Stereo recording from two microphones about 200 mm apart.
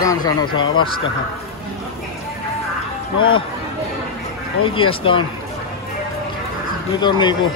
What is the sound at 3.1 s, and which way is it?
Speech, 25° left (ahead or behind).